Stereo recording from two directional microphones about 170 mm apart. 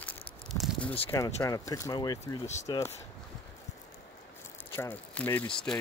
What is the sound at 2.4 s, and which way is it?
Speech, 40° left (ahead or behind).